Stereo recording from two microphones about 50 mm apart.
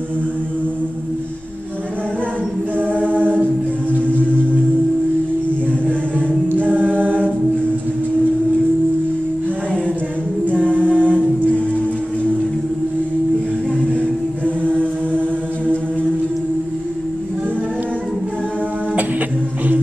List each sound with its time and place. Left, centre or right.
6.5 s a capella: right
10.4 s a capella: right